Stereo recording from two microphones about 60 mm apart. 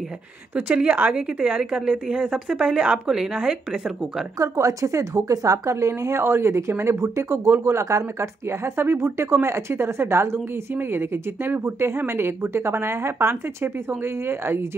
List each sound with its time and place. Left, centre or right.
0.6 s a woman's voice: centre
4.4 s a woman's voice: right